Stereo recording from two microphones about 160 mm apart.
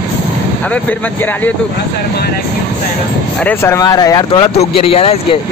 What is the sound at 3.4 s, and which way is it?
Speech, 20° left (ahead or behind).